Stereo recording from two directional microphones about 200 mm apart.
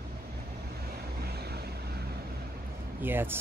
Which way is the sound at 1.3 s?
55° right (ahead or behind).